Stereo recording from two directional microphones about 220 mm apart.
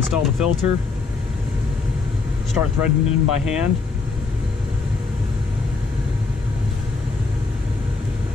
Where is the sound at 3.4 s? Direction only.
5° right (ahead or behind).